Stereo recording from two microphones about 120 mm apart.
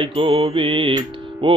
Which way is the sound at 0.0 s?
45° right (ahead or behind).